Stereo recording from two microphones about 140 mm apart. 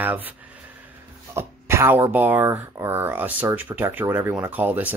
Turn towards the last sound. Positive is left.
turn(degrees=-15)  # may be behind; listen again after turning